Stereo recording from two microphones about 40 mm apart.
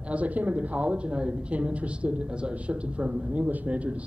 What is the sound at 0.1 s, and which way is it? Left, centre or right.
A woman's voice, right.